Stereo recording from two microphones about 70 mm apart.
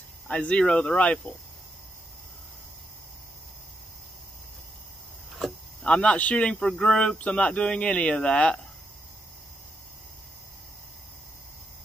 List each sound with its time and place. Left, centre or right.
0.3 s speech: centre
5.8 s speech: centre